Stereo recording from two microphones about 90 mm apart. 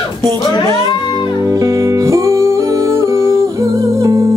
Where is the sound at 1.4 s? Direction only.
40° right (ahead or behind).